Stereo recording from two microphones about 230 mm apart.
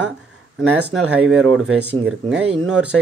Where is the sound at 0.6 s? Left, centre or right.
Centre.